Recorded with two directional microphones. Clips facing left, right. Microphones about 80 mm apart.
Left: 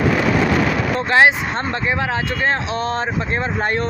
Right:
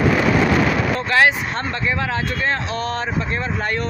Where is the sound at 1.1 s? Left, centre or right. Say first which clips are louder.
Left 3 dB; left.